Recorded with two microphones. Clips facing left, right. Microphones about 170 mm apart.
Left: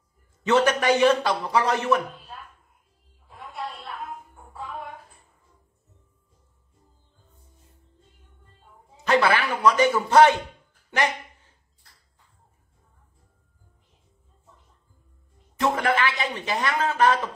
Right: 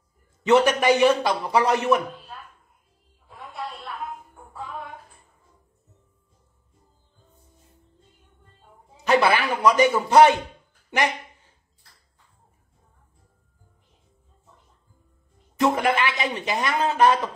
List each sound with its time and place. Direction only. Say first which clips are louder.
0.5 s speech: right 2 dB; 10° right (ahead or behind)
9.0 s speech: right 1 dB; 10° right (ahead or behind)
15.6 s speech: right 2 dB; 15° right (ahead or behind)